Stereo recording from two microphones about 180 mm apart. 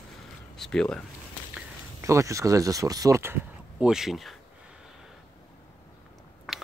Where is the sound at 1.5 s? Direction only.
15° right (ahead or behind).